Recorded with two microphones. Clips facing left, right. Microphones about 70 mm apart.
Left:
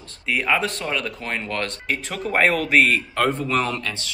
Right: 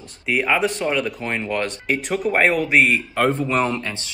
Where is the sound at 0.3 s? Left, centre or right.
Centre.